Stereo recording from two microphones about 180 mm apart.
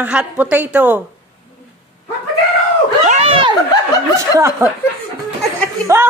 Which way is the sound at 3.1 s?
35° right (ahead or behind).